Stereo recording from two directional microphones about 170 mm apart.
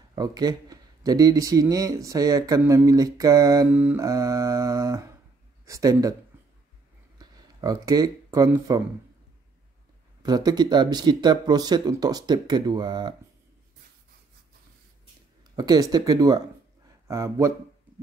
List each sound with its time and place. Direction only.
0.1 s speech: 20° right (ahead or behind)
3.7 s speech: 10° right (ahead or behind)
4.0 s speech: 20° right (ahead or behind)
7.2 s a sound: 25° right (ahead or behind)
8.5 s speech: 20° right (ahead or behind)
10.2 s speech: 25° right (ahead or behind)
15.5 s speech: 25° right (ahead or behind)